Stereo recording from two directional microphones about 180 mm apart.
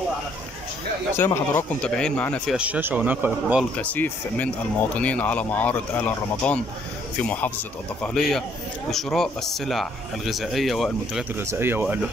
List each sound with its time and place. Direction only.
1.1 s speech: 10° left (ahead or behind)
2.5 s speech: 5° right (ahead or behind)
3.7 s speech: 10° left (ahead or behind)
11.3 s speech: 10° right (ahead or behind)